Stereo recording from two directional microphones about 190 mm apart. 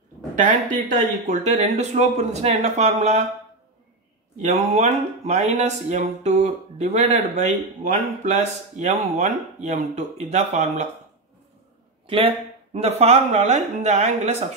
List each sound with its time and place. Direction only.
0.4 s speech: 45° right (ahead or behind)
4.4 s speech: 40° right (ahead or behind)
12.1 s speech: 30° right (ahead or behind)